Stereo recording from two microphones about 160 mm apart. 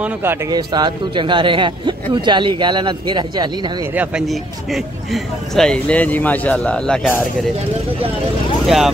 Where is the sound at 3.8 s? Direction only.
10° right (ahead or behind); by 7.4 s 10° left (ahead or behind).